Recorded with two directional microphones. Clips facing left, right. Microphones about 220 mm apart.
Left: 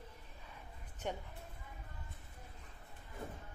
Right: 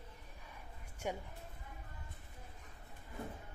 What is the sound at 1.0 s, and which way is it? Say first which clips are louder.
Speech: right 1 dB; 10° right (ahead or behind).